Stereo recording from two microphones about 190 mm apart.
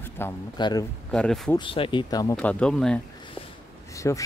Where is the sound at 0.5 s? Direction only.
25° left (ahead or behind).